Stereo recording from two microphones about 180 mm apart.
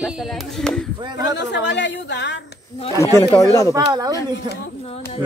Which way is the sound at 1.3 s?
75° left (ahead or behind).